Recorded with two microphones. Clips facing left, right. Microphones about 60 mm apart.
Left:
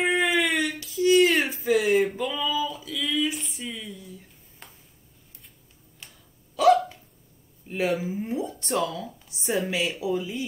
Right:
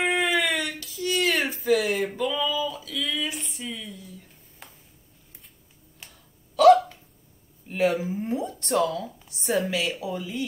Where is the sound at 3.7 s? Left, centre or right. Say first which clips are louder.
Even; centre.